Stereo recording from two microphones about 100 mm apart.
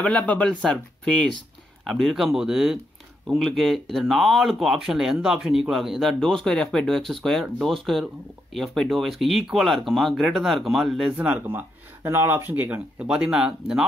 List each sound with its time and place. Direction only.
0.0 s speech: 10° left (ahead or behind); by 11.1 s 5° right (ahead or behind)
11.2 s speech: 20° right (ahead or behind)